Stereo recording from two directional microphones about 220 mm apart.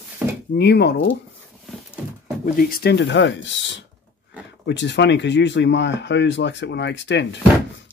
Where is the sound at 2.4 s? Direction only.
40° left (ahead or behind).